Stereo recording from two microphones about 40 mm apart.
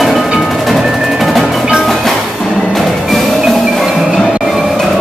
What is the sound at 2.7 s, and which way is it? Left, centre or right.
Music, centre.